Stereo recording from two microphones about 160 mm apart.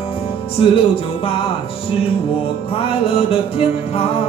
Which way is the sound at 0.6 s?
35° left (ahead or behind).